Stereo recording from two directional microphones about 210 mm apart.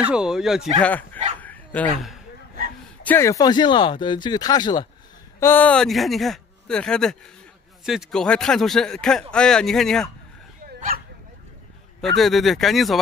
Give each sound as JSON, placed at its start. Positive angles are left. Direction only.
{"t": 0.0, "sound": "speech", "side_deg": -5}
{"t": 0.8, "sound": "speech", "side_deg": 10}
{"t": 1.4, "sound": "dog", "side_deg": 10}
{"t": 3.1, "sound": "speech", "side_deg": 15}
{"t": 5.4, "sound": "speech", "side_deg": 10}
{"t": 10.6, "sound": "dog", "side_deg": -45}
{"t": 12.0, "sound": "speech", "side_deg": 0}